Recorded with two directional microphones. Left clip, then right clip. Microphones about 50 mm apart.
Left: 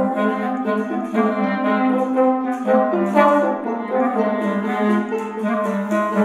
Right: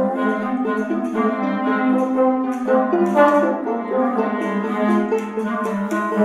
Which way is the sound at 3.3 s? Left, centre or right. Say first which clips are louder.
Even; centre.